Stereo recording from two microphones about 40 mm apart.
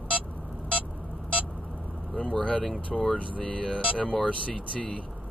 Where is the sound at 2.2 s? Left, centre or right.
Left.